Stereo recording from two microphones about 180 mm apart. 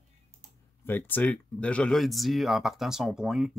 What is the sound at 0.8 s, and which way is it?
Speech, 10° left (ahead or behind).